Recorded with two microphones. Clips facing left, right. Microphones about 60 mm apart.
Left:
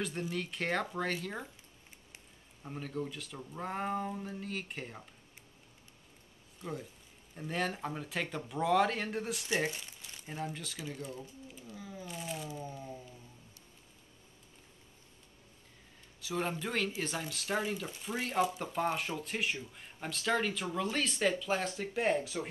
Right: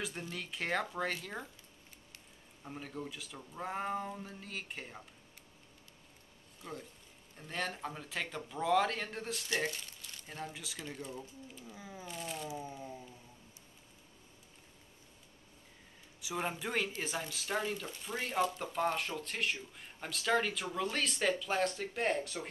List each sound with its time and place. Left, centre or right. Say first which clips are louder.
0.0 s speech: left 5 dB; centre
2.6 s speech: left 4 dB; centre
6.6 s speech: left 4 dB; centre
10.5 s speech: left 3 dB; centre
11.7 s a sound: left 4 dB; centre
12.1 s crumpling: left 1 dB; centre
16.2 s speech: left 2 dB; centre